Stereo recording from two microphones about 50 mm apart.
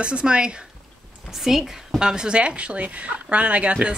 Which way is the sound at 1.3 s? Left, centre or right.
Centre.